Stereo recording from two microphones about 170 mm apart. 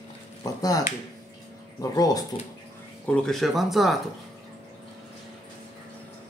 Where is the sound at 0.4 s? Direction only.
20° left (ahead or behind).